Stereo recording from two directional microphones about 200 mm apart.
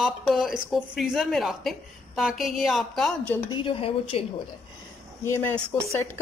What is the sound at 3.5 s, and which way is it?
Speech, 25° left (ahead or behind).